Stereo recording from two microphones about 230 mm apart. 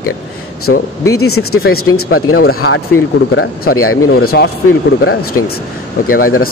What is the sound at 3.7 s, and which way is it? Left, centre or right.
Speech, left.